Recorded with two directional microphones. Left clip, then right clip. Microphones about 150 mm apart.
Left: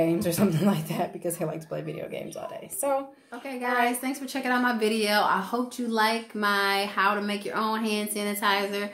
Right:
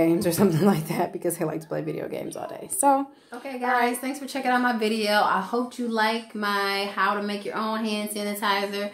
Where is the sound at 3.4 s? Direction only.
Centre (ahead or behind).